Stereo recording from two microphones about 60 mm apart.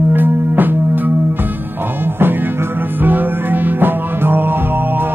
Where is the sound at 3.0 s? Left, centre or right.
Right.